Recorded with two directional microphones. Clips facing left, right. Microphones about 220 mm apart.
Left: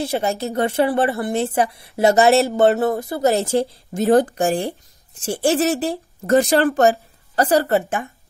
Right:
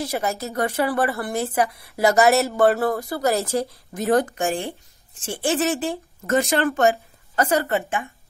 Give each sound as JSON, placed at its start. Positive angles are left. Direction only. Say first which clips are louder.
{"t": 0.0, "sound": "a woman's voice", "louder": "left 4 dB", "side_deg": 30}